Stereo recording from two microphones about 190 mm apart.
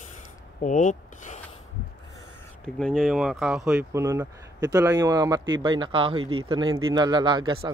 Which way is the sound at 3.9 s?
15° right (ahead or behind).